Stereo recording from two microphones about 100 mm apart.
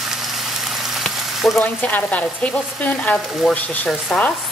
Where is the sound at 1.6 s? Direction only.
15° left (ahead or behind).